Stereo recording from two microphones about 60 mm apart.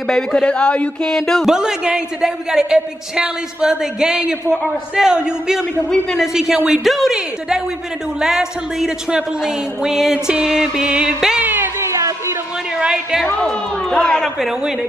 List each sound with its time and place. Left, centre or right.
0.1 s speech: centre
1.4 s a man's voice: centre
8.2 s a man's voice: centre
10.1 s a man's voice: centre
11.4 s music: right
11.8 s a sound: right
12.7 s a woman's voice: centre
13.4 s speech: centre